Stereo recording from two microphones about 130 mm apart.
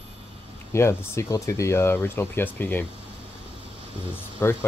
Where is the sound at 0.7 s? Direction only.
20° left (ahead or behind).